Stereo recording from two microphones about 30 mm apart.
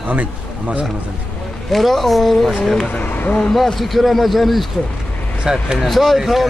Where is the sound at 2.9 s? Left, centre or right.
Left.